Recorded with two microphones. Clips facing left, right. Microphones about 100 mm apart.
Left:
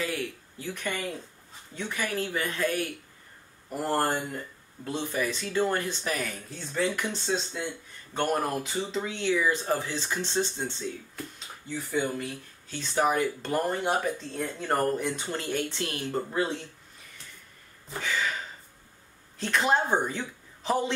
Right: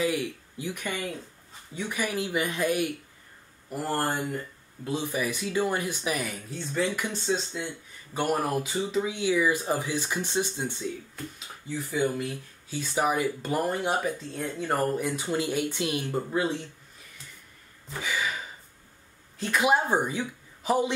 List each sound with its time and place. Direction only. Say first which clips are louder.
0.0 s a sound: right 4 dB; 15° right (ahead or behind)
1.8 s speech: right 1 dB; 15° right (ahead or behind)
3.8 s speech: left 1 dB; centre (ahead or behind)
16.1 s speech: even; 5° right (ahead or behind)
18.0 s a man's voice: even; 10° right (ahead or behind)